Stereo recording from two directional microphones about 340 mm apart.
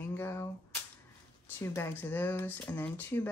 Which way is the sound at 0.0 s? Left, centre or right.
Centre.